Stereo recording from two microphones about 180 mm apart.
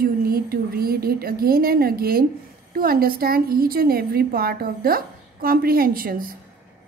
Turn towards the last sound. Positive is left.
turn(degrees=-55)  # may be behind; listen again after turning